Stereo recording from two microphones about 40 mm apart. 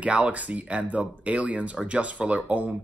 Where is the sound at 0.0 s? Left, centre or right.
Right.